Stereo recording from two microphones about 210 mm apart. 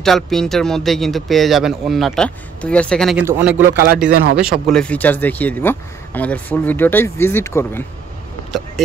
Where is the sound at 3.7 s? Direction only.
45° right (ahead or behind).